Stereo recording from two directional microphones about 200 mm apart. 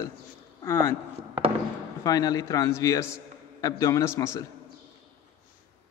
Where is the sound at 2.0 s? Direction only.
20° left (ahead or behind).